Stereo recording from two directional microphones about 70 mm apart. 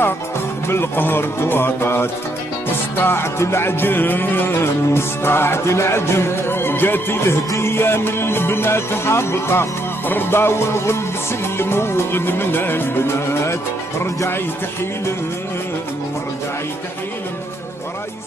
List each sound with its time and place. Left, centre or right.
0.7 s music: left